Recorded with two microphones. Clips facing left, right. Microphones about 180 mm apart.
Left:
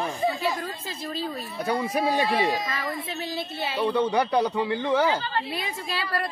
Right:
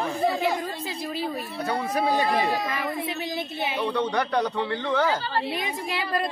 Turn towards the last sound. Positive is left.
turn(degrees=-20)  # may be behind; listen again after turning